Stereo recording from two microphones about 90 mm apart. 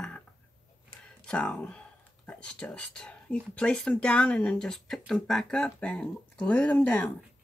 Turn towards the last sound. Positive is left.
turn(degrees=20)  # may be behind; listen again after turning